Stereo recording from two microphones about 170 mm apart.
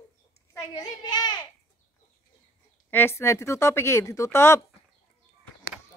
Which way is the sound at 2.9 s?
15° left (ahead or behind).